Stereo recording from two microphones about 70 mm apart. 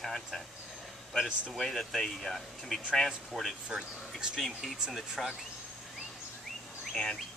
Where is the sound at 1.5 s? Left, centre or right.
Centre.